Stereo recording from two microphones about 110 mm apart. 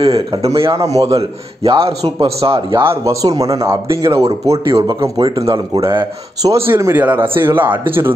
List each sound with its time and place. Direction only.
0.0 s a man's voice: 65° right (ahead or behind)
0.7 s speech: 30° right (ahead or behind)
1.6 s a man's voice: 60° right (ahead or behind)
3.1 s speech: 30° right (ahead or behind)
4.2 s a man's voice: 65° right (ahead or behind)
4.8 s speech: 30° right (ahead or behind)
6.5 s speech: 25° right (ahead or behind)